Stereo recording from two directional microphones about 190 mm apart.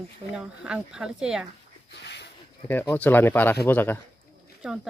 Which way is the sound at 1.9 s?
65° left (ahead or behind).